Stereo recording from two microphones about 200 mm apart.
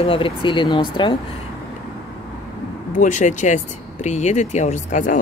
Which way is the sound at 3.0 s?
40° left (ahead or behind).